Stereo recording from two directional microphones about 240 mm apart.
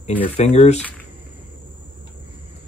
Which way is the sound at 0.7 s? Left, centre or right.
Centre.